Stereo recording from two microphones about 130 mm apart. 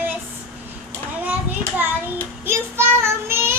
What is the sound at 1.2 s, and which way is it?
Children playing, 10° right (ahead or behind).